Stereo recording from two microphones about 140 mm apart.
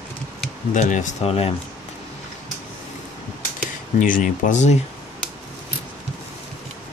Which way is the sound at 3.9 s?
70° left (ahead or behind).